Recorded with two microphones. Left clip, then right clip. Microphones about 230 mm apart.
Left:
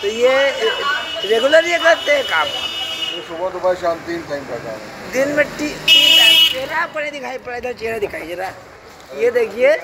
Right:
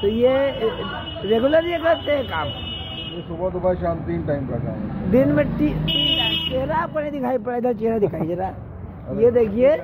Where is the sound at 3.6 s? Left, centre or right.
Centre.